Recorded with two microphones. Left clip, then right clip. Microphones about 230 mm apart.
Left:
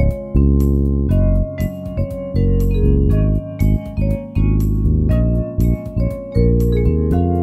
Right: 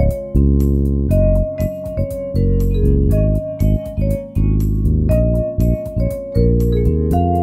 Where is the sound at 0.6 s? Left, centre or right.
Centre.